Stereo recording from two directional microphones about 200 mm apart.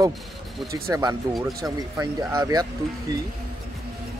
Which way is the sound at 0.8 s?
15° right (ahead or behind).